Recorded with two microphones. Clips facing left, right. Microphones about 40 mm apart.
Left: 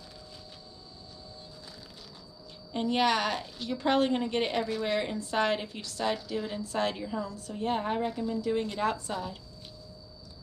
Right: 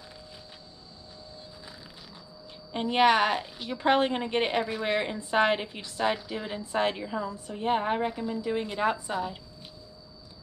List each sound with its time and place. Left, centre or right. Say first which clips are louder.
2.7 s a woman's voice: right 4 dB; right